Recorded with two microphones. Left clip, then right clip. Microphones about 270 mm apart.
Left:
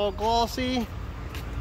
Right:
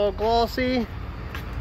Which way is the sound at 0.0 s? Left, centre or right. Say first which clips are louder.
Right 3 dB; centre.